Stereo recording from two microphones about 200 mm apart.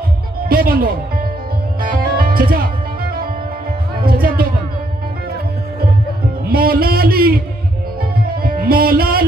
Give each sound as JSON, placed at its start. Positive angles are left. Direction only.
{"t": 0.5, "sound": "speech", "side_deg": -45}
{"t": 1.8, "sound": "music", "side_deg": -45}
{"t": 6.5, "sound": "a sound", "side_deg": -50}
{"t": 8.4, "sound": "music", "side_deg": -45}